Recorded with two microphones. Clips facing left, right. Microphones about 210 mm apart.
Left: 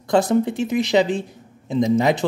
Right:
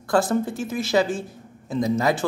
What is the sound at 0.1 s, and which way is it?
Speech, 20° left (ahead or behind).